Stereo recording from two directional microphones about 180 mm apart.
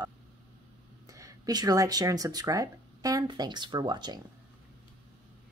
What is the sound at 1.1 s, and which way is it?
Speech, 20° right (ahead or behind).